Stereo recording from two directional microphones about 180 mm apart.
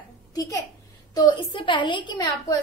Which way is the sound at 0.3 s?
20° left (ahead or behind).